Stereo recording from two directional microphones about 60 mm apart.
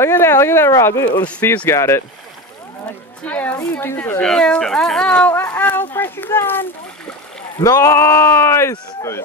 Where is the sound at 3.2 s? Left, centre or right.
Left.